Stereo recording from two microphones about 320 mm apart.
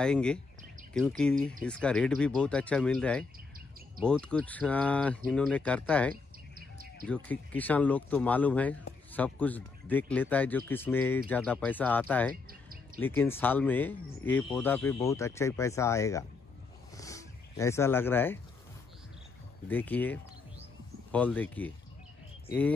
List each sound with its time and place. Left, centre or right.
0.0 s speech: centre
6.5 s bird: right
7.1 s speech: centre
12.4 s music: right
13.0 s speech: centre
16.9 s a sound: centre
19.7 s speech: centre